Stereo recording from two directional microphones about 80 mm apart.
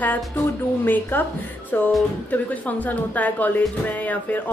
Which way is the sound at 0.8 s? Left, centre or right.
Left.